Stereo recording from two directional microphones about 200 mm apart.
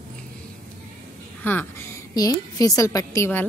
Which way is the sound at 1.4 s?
10° left (ahead or behind).